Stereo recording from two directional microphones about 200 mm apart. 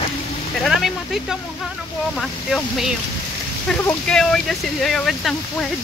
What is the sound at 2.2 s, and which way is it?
Speech, centre (ahead or behind).